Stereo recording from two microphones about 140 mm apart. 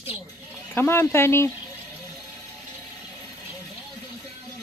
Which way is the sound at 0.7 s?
15° left (ahead or behind).